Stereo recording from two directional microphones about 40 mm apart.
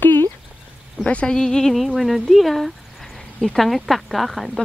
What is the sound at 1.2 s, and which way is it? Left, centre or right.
Speech, centre.